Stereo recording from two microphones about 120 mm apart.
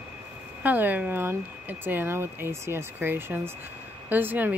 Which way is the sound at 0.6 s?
15° right (ahead or behind).